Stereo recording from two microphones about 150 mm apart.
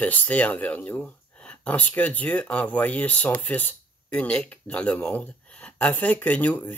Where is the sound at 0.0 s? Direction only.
10° left (ahead or behind).